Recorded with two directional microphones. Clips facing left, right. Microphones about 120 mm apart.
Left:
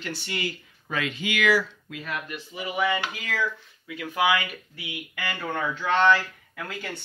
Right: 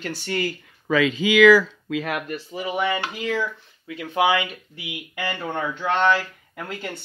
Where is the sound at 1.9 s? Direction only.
80° right.